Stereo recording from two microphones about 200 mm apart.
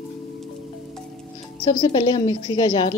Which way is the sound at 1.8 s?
20° left (ahead or behind).